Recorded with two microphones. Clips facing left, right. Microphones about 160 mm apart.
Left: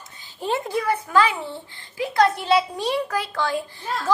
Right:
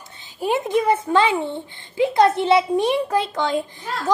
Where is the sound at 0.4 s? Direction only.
20° right (ahead or behind).